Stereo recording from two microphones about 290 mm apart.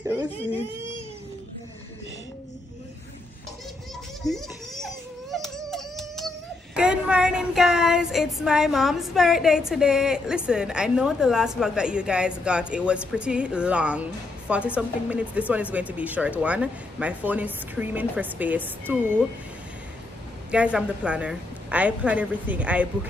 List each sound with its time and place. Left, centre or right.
0.0 s speech: centre
4.2 s speech: centre
4.8 s baby cry: centre
14.8 s speech: centre
20.5 s speech: centre